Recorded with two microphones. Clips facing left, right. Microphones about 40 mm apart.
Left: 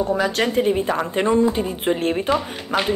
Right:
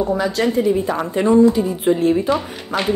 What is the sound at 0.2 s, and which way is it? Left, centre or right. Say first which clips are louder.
Speech: right 2 dB; left.